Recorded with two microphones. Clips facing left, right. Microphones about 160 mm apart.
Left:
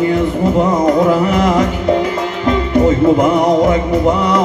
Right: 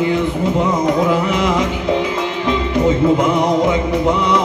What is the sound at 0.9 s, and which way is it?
Carnatic music, 45° left (ahead or behind).